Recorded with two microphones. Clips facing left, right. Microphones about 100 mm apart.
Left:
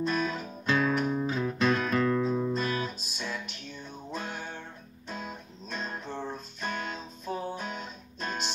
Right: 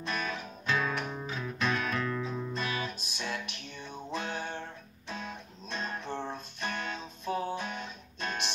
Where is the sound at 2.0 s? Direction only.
35° left (ahead or behind).